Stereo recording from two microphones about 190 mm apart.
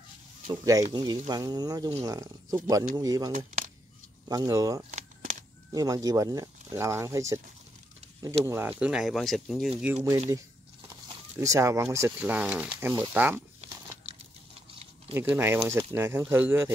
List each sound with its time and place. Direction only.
0.5 s speech: 20° right (ahead or behind)
3.3 s speech: 45° right (ahead or behind)
4.3 s speech: 20° right (ahead or behind); by 9.9 s 5° right (ahead or behind)
11.3 s speech: 15° right (ahead or behind)
15.1 s speech: 10° right (ahead or behind)